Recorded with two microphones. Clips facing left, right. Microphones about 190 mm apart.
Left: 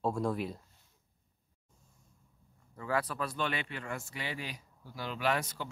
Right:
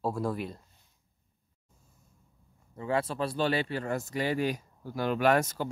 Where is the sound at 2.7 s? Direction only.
25° right (ahead or behind); by 5.7 s 45° right (ahead or behind).